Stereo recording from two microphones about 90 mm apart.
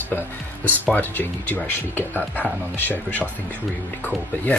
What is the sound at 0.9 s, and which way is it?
Speech, 20° left (ahead or behind).